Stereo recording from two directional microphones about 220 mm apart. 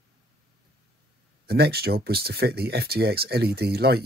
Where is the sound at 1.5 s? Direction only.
45° right (ahead or behind).